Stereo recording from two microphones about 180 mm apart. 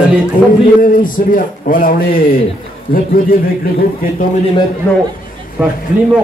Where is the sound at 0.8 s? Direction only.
50° left (ahead or behind).